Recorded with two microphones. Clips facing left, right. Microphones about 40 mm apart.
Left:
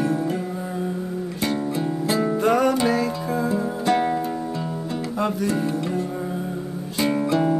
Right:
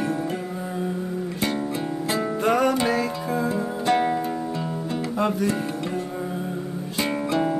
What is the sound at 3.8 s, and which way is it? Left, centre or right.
Music, right.